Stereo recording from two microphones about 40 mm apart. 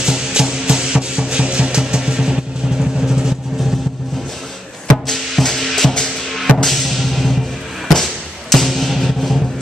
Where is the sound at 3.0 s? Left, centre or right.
Centre.